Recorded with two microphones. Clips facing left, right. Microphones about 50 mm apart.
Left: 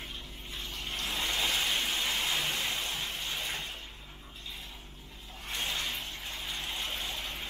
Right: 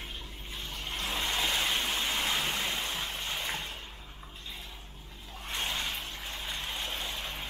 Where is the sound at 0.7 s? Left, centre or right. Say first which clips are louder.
Right 1 dB; right.